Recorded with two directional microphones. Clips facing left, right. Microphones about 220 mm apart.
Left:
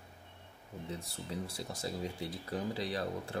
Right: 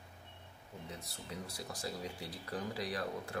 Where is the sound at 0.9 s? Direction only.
30° left (ahead or behind).